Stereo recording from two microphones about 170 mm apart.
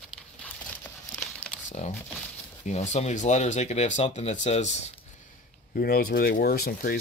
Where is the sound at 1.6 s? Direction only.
40° left (ahead or behind).